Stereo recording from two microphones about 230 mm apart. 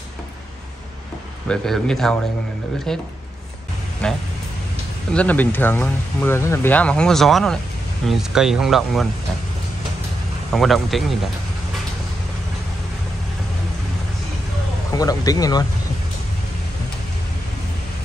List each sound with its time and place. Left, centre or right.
1.5 s speech: centre
10.5 s speech: centre
15.0 s speech: centre